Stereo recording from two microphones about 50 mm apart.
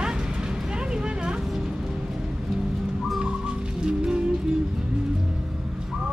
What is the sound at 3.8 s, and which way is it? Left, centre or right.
Music, centre.